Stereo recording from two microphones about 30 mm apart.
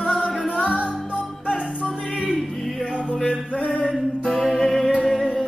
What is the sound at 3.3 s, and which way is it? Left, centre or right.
Music, left.